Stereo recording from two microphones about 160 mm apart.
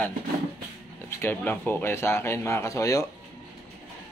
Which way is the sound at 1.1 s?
10° left (ahead or behind).